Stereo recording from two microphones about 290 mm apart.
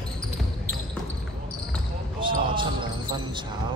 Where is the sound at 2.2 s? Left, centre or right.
Centre.